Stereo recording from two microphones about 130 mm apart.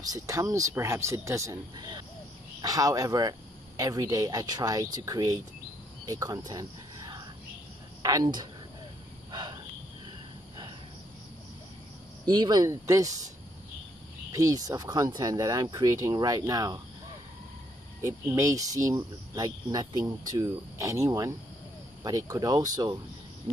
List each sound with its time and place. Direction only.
0.0 s speech: 25° right (ahead or behind)
9.3 s cricket: 35° right (ahead or behind)
12.3 s speech: 35° right (ahead or behind)
14.3 s speech: 25° right (ahead or behind)
18.0 s speech: 25° right (ahead or behind)